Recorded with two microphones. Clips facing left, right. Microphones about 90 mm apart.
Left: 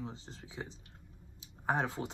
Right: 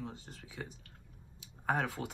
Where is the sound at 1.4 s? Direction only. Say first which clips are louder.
Left 1 dB; 25° left (ahead or behind).